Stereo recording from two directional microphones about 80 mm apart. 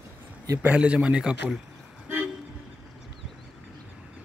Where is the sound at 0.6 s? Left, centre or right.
Centre.